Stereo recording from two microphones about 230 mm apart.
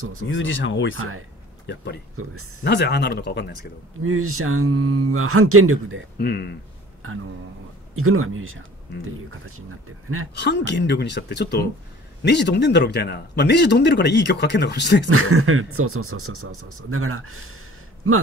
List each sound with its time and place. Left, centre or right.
0.3 s speech: left
0.9 s speech: right
2.6 s a man's voice: left
4.0 s speech: right
6.1 s a man's voice: left
7.9 s speech: right
10.3 s a man's voice: left
15.0 s speech: right